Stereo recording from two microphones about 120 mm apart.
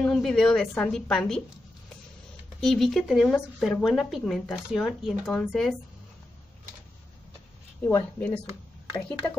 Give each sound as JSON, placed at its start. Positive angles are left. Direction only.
{"t": 0.0, "sound": "speech", "side_deg": 5}
{"t": 2.6, "sound": "speech", "side_deg": 5}
{"t": 7.8, "sound": "a woman's voice", "side_deg": 20}